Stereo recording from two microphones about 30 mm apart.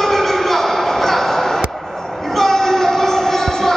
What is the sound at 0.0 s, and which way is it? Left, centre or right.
Music, centre.